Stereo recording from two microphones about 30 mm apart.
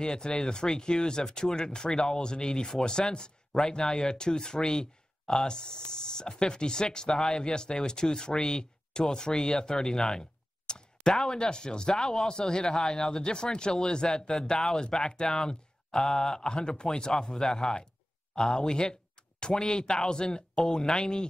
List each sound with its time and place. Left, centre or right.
0.0 s speech: left
10.7 s a sound: left
11.1 s speech: left